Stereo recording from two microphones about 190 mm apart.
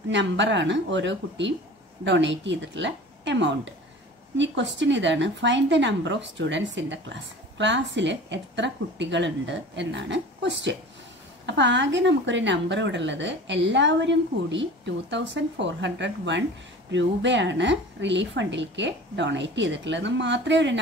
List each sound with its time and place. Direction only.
0.1 s speech: 70° right (ahead or behind)